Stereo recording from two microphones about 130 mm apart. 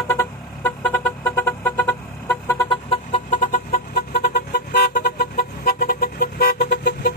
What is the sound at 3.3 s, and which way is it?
Chicken, 70° left (ahead or behind).